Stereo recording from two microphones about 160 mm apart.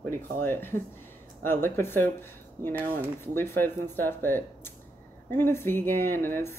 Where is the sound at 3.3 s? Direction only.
15° left (ahead or behind).